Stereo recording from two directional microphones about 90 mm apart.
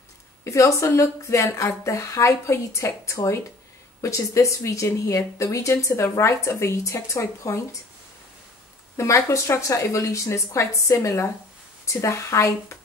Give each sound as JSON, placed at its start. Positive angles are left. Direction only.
{"t": 0.4, "sound": "speech", "side_deg": 35}
{"t": 8.9, "sound": "speech", "side_deg": 35}